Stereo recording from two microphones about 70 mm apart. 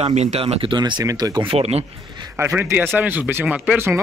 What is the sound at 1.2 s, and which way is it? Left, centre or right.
Speech, right.